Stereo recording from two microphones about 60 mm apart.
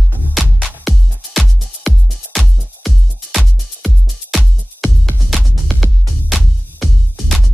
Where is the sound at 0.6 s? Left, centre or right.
Centre.